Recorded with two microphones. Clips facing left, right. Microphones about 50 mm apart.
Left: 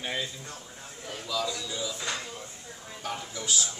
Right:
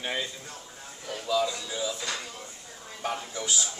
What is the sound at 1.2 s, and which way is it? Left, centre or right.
Speech, right.